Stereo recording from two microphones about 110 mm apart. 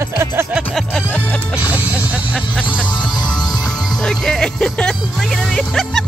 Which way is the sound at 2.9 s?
40° left (ahead or behind).